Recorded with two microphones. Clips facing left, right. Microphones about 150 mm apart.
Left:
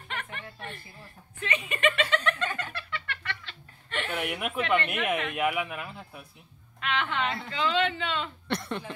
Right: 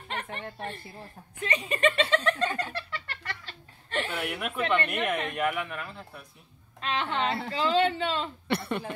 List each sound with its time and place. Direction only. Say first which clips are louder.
0.1 s a woman's voice: right 3 dB; 35° right (ahead or behind)
1.4 s a sound: right 2 dB; 35° right (ahead or behind)
4.2 s speech: even; centre (ahead or behind)
6.8 s a woman's voice: right 1 dB; 35° right (ahead or behind)
8.5 s speech: right 4 dB; 5° right (ahead or behind)